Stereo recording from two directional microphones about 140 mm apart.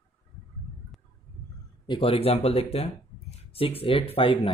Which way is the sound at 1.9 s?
40° left (ahead or behind).